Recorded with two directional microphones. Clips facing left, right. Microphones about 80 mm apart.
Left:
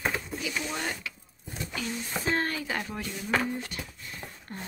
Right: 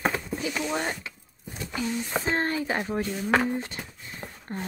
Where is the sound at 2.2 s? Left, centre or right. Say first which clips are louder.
Right 1 dB; right.